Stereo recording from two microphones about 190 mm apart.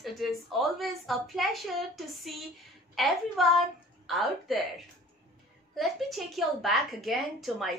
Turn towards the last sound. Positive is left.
turn(degrees=0)  # may be behind; listen again after turning